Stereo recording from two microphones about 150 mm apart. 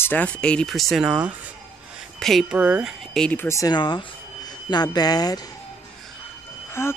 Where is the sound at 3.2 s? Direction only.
10° left (ahead or behind).